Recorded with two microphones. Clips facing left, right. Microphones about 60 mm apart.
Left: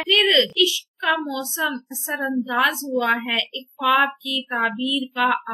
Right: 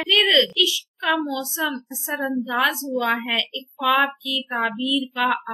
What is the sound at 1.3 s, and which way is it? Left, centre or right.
Child singing, centre.